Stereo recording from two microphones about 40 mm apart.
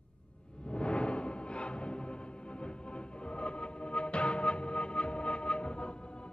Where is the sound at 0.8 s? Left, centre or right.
Left.